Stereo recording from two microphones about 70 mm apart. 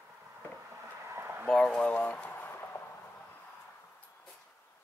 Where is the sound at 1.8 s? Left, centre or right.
Centre.